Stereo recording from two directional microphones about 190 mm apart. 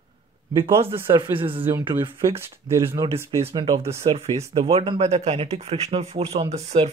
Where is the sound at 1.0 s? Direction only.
25° right (ahead or behind).